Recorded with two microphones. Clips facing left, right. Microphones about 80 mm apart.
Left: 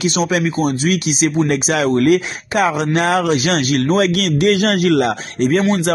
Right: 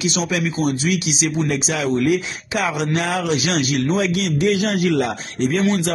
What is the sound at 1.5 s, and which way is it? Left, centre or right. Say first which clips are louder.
Speech: left 5 dB; left.